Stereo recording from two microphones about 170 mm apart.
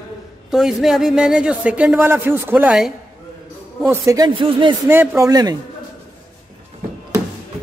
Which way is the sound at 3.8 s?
20° right (ahead or behind).